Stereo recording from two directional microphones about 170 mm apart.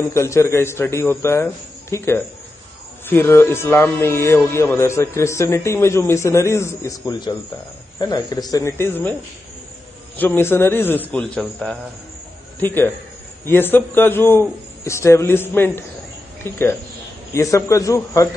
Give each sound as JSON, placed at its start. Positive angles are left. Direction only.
{"t": 0.0, "sound": "speech", "side_deg": 15}
{"t": 10.1, "sound": "speech", "side_deg": 10}